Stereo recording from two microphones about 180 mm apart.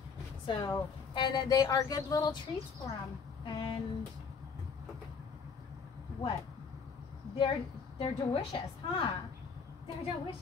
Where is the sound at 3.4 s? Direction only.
25° left (ahead or behind).